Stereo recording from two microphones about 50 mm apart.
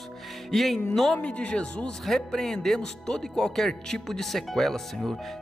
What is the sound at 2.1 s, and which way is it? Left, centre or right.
Speech, centre.